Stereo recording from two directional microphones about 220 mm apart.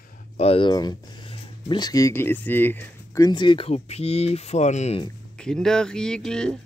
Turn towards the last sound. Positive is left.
turn(degrees=5)  # may be behind; listen again after turning